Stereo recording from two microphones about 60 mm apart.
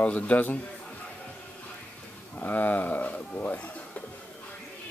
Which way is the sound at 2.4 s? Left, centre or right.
Left.